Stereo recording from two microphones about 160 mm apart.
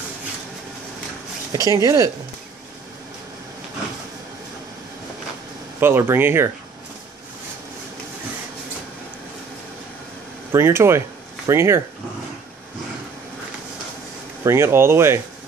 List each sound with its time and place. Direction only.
1.5 s speech: 20° right (ahead or behind)
5.8 s speech: 15° right (ahead or behind)
10.5 s speech: 15° right (ahead or behind)
14.4 s speech: 15° right (ahead or behind)